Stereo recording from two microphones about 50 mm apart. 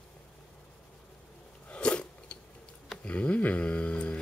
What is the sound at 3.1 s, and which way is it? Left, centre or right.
Mantra, left.